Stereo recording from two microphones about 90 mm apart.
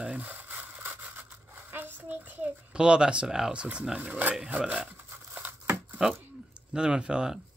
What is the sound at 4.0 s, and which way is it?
Speech, 20° right (ahead or behind).